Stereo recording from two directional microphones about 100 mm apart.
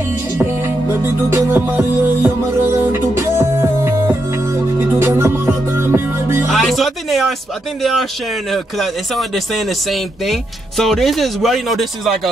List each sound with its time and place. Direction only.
0.4 s music: 25° right (ahead or behind)
6.5 s speech: centre (ahead or behind)